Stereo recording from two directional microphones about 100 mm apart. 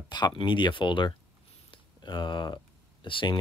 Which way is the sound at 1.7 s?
50° left (ahead or behind).